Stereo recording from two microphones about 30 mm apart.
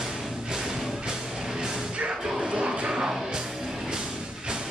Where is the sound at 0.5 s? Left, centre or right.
Right.